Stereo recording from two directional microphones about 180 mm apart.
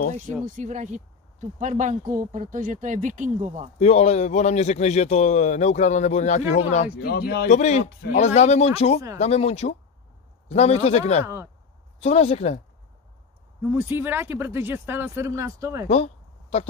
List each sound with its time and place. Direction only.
0.6 s speech: 40° right (ahead or behind)
3.8 s speech: 35° left (ahead or behind)
7.0 s speech: 60° left (ahead or behind)
7.4 s speech: 40° left (ahead or behind)
13.6 s speech: 10° right (ahead or behind)
15.9 s a sound: 35° left (ahead or behind)